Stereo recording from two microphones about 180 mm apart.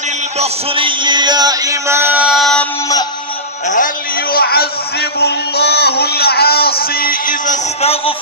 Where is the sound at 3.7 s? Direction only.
45° left (ahead or behind).